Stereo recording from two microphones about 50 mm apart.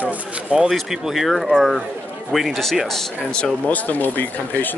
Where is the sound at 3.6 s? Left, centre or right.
Left.